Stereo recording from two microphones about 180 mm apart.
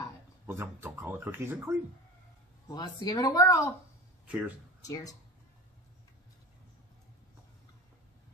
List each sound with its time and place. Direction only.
0.5 s speech: 10° right (ahead or behind)
2.7 s speech: 25° left (ahead or behind)
4.3 s speech: 5° right (ahead or behind)
4.8 s speech: 20° left (ahead or behind)